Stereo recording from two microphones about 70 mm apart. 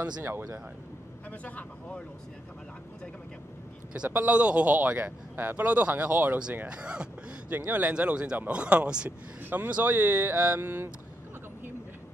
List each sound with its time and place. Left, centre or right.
0.2 s speech: right
1.4 s speech: centre
4.1 s speech: right
6.7 s speech: centre
7.5 s speech: right
7.9 s speech: centre; by 10.9 s right